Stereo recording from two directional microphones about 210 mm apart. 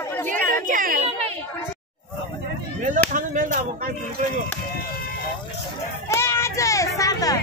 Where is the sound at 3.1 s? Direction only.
35° right (ahead or behind).